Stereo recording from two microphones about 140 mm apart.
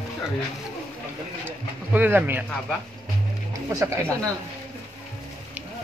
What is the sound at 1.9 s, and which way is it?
Speech, 15° right (ahead or behind).